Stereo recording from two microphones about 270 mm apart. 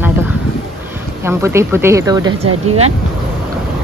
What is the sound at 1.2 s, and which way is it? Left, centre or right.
Speech, centre.